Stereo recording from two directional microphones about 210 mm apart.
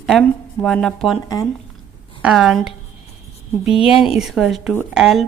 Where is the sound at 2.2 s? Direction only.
Centre (ahead or behind).